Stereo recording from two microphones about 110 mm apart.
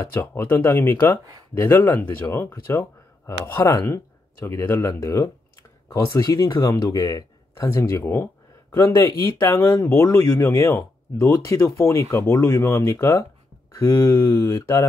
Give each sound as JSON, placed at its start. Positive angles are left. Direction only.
{"t": 0.1, "sound": "speech", "side_deg": 20}